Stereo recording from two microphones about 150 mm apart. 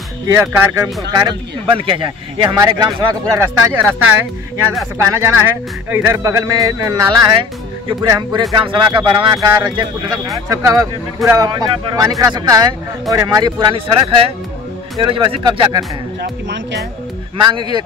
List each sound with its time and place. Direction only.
0.3 s speech: 20° right (ahead or behind)
1.8 s speech: 35° right (ahead or behind)
4.9 s speech: 20° right (ahead or behind)
17.4 s speech: 30° right (ahead or behind)